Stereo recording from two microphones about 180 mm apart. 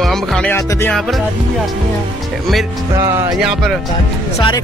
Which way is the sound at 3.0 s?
15° right (ahead or behind).